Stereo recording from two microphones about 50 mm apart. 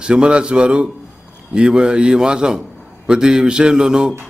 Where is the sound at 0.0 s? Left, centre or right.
Centre.